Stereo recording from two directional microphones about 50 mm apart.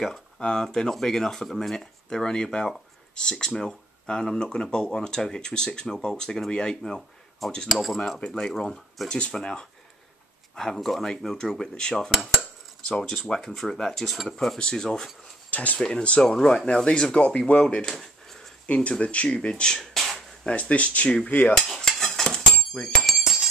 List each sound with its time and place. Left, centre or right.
0.4 s speech: centre
7.4 s speech: centre
8.4 s speech: centre
15.5 s speech: left
15.9 s speech: left
17.8 s a sound: centre
18.7 s speech: left
19.8 s a sound: centre
20.4 s speech: left
21.3 s cutlery: left
21.6 s stir: centre
22.9 s bicycle bell: centre